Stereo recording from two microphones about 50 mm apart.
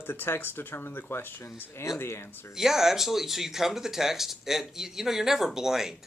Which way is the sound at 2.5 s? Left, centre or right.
Centre.